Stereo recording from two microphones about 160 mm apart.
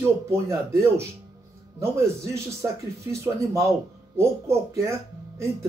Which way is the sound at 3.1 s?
20° right (ahead or behind).